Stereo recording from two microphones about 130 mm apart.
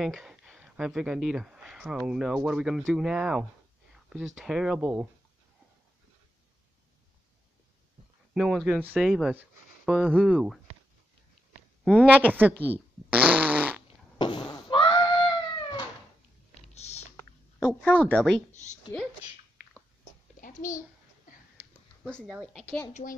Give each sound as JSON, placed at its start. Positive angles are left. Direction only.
{"t": 0.0, "sound": "speech", "side_deg": -5}
{"t": 8.4, "sound": "speech", "side_deg": 0}
{"t": 11.8, "sound": "speech", "side_deg": -10}
{"t": 12.5, "sound": "a woman's voice", "side_deg": 15}
{"t": 13.1, "sound": "fart", "side_deg": -10}
{"t": 14.1, "sound": "cat", "side_deg": 35}
{"t": 16.7, "sound": "typing", "side_deg": 55}
{"t": 17.2, "sound": "speech", "side_deg": 20}
{"t": 18.5, "sound": "a sound", "side_deg": 65}
{"t": 20.3, "sound": "a sound", "side_deg": 85}
{"t": 22.2, "sound": "speech", "side_deg": 0}
{"t": 22.6, "sound": "a woman's voice", "side_deg": 15}